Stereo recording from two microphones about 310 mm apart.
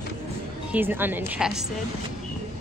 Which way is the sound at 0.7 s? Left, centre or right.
Centre.